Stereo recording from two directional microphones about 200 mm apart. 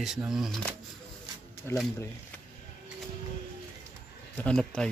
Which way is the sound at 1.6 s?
10° left (ahead or behind).